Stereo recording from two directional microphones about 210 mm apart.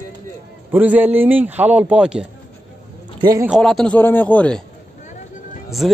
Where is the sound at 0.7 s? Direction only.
10° right (ahead or behind).